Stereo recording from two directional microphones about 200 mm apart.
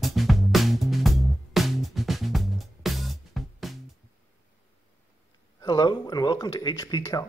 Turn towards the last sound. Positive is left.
turn(degrees=20)  # may be behind; listen again after turning